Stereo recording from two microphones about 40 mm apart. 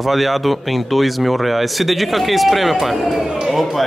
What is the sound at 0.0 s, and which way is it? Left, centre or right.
A man's voice, centre.